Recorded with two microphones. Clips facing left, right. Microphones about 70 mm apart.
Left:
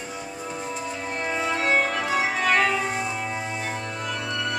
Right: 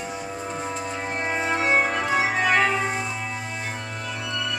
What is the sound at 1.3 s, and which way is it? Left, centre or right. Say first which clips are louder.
Music: right 1 dB; right.